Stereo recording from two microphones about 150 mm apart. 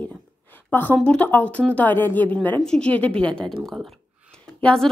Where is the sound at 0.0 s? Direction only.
10° left (ahead or behind).